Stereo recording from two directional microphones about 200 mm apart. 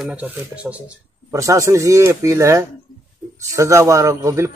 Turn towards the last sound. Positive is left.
turn(degrees=-15)  # may be behind; listen again after turning